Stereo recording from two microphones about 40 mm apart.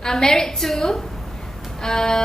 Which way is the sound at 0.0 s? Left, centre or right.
Centre.